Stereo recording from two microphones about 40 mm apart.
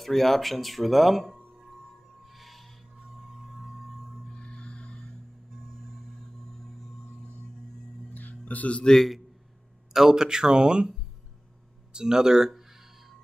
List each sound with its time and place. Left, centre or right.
0.0 s speech: centre
2.2 s music: centre
3.2 s singing bowl: centre
4.3 s music: left
8.1 s music: left
8.8 s a man's voice: centre
9.9 s speech: centre
11.9 s speech: centre